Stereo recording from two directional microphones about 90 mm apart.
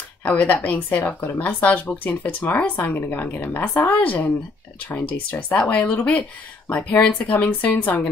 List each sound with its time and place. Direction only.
0.2 s a woman's voice: 15° left (ahead or behind)